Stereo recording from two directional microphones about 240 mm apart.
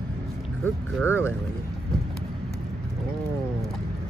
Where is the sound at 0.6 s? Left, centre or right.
Centre.